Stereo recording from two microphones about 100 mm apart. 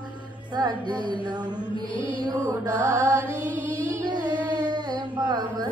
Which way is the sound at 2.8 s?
30° right (ahead or behind).